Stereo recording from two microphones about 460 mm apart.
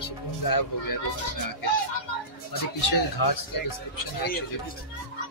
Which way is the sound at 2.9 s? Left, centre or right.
Left.